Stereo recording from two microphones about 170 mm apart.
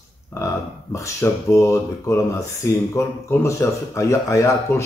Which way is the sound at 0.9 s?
15° left (ahead or behind).